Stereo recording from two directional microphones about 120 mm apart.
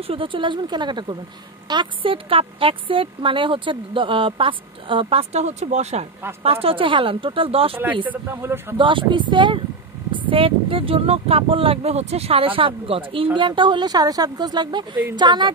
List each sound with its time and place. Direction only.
0.0 s speech: 50° right (ahead or behind)
5.3 s speech: 65° right (ahead or behind)
6.4 s speech: 55° right (ahead or behind)
7.7 s a man's voice: 15° right (ahead or behind)
8.7 s speech: 45° right (ahead or behind)